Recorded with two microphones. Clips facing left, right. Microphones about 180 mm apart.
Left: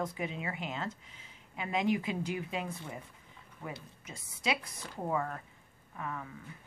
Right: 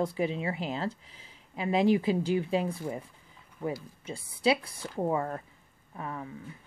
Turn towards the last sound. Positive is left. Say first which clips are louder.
# right 3 dB
turn(degrees=-30)  # may be behind; listen again after turning